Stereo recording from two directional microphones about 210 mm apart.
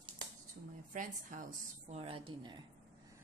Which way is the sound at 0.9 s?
40° right (ahead or behind).